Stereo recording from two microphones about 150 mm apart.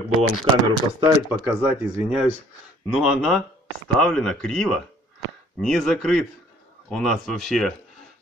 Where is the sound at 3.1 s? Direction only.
5° right (ahead or behind).